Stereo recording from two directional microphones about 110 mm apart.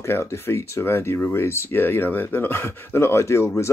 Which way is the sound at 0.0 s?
25° left (ahead or behind).